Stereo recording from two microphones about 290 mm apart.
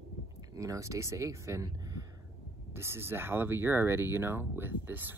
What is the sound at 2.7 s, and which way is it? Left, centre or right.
Speech, centre.